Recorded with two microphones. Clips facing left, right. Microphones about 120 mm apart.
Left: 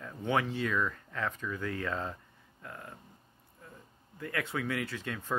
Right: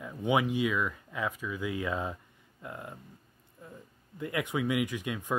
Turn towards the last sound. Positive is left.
turn(degrees=-15)  # may be behind; listen again after turning